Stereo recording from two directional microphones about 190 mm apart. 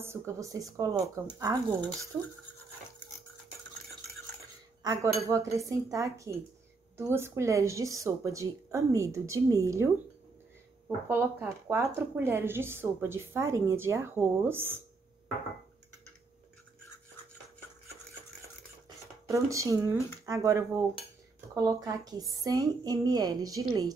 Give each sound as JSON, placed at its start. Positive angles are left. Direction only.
{"t": 0.0, "sound": "speech", "side_deg": -15}
{"t": 4.8, "sound": "speech", "side_deg": -15}
{"t": 11.1, "sound": "speech", "side_deg": -10}
{"t": 19.2, "sound": "a woman's voice", "side_deg": -15}